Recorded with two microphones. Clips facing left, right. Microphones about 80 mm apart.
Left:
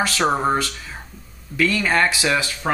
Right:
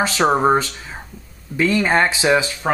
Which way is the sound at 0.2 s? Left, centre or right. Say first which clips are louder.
Right 5 dB; centre.